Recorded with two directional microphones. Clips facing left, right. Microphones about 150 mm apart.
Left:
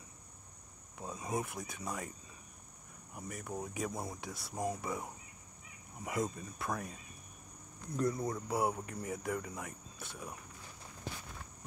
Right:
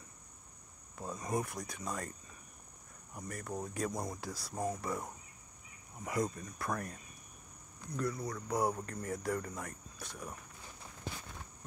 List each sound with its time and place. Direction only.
0.9 s insect: 5° left (ahead or behind)
1.8 s speech: 5° left (ahead or behind)
3.2 s speech: 5° left (ahead or behind)
4.5 s speech: 15° left (ahead or behind)
7.9 s speech: 20° left (ahead or behind)
8.5 s speech: 5° left (ahead or behind)